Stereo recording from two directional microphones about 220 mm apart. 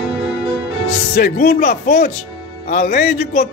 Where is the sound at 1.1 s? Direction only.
35° left (ahead or behind).